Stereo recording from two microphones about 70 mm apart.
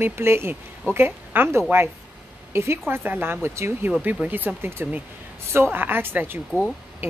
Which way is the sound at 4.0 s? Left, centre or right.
Right.